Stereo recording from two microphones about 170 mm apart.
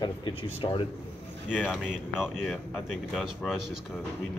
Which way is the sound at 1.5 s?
5° right (ahead or behind).